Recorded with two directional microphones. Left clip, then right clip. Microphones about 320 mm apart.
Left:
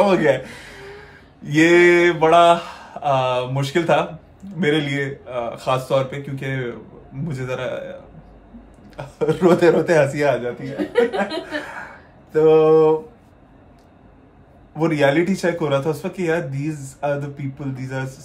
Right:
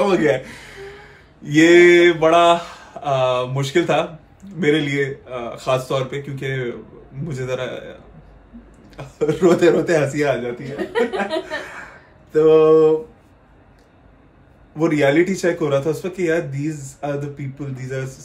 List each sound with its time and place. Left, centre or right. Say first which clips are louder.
0.0 s speech: left 1 dB; centre
10.6 s speech: left 2 dB; right
12.3 s a sound: right 1 dB; centre
14.8 s speech: right 1 dB; centre